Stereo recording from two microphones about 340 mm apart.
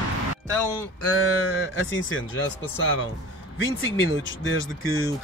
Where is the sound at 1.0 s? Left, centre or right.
Left.